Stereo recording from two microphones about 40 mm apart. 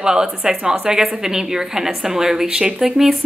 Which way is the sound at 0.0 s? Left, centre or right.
Centre.